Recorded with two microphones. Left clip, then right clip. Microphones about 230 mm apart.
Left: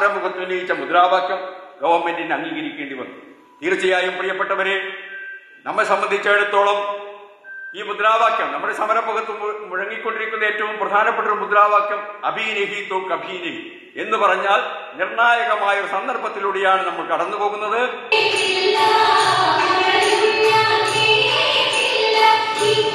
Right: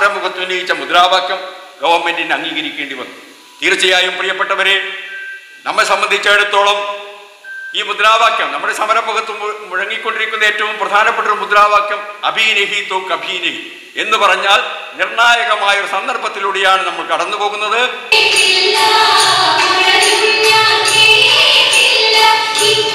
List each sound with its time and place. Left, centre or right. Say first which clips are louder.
0.0 s a man's voice: right 5 dB; centre
9.4 s a man's voice: right 5 dB; centre
16.4 s a sound: right 5 dB; centre